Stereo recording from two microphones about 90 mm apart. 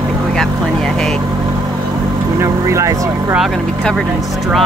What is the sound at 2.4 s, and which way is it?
Vehicle, 35° right (ahead or behind).